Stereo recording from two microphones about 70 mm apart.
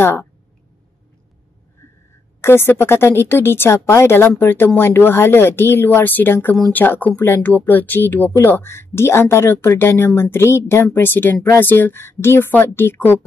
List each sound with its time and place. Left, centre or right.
0.0 s a woman's voice: left
2.4 s a woman's voice: left